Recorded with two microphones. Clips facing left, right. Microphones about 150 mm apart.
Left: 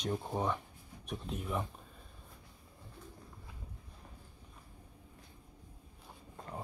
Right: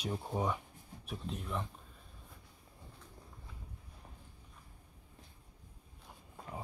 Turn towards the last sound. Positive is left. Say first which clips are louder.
# left 1 dB
turn(degrees=-5)  # may be behind; listen again after turning